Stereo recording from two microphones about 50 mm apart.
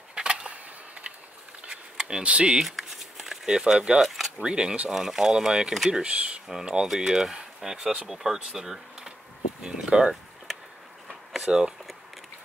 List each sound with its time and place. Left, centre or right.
0.1 s a sound: centre
1.7 s a sound: centre
2.6 s shuffling cards: centre
3.4 s speech: centre
4.9 s speech: centre; by 6.4 s right
6.4 s speech: centre
11.4 s speech: centre